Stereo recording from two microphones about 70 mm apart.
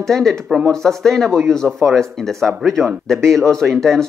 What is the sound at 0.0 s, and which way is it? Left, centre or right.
Speech, centre.